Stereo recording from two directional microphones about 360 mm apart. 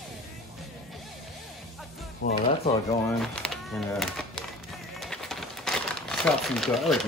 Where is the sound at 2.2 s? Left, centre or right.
Left.